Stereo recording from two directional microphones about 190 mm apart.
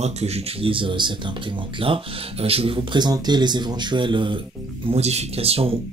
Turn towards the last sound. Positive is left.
turn(degrees=-30)  # may be behind; listen again after turning